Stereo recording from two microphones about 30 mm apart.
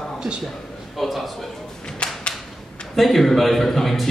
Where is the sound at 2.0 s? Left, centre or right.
Left.